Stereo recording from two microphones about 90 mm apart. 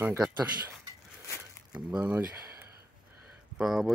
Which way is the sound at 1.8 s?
15° right (ahead or behind).